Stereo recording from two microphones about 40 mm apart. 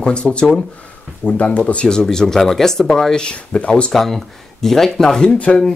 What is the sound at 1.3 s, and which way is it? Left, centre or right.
Speech, left.